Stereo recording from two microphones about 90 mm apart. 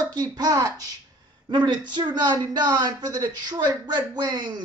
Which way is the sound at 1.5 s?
55° right (ahead or behind).